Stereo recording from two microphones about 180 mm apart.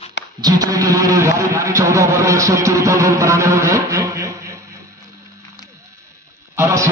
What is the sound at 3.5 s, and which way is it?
Music, 15° right (ahead or behind).